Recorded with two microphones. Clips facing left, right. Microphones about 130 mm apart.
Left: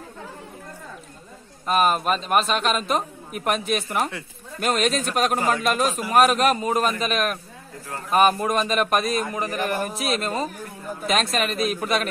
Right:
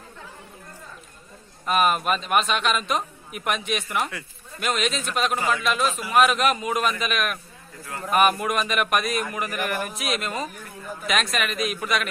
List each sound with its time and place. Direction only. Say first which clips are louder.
1.7 s speech: left 1 dB; 35° left (ahead or behind)